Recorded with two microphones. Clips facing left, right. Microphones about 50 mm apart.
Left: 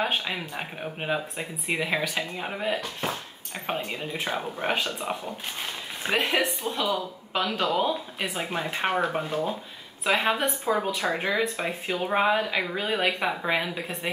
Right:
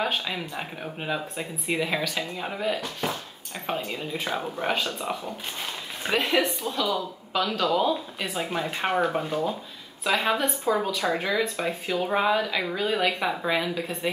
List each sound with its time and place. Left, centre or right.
0.0 s speech: centre
4.7 s speech: left
6.6 s speech: left; by 9.4 s centre
10.0 s speech: left